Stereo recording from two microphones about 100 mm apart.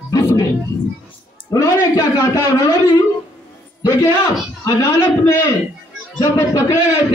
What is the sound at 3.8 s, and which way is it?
A man's voice, 35° left (ahead or behind).